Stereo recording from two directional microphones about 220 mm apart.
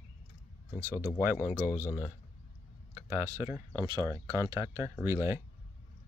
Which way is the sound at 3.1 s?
15° right (ahead or behind).